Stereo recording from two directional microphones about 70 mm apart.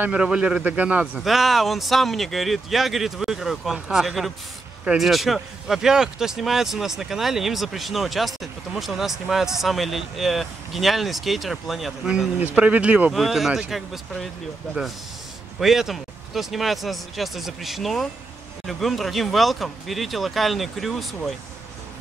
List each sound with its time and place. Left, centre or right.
0.1 s a man's voice: centre
1.2 s a man's voice: centre
12.4 s speech: right
13.1 s speech: centre
15.6 s speech: centre